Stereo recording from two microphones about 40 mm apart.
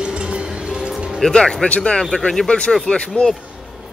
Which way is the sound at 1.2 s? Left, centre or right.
Centre.